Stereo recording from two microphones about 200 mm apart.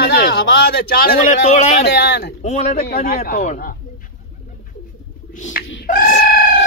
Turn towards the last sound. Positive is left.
turn(degrees=45)  # may be behind; listen again after turning